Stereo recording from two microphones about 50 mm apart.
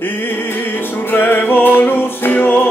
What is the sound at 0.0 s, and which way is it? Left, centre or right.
Music, left.